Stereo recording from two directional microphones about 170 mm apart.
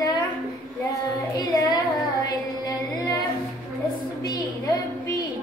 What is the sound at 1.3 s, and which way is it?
Child singing, 20° left (ahead or behind).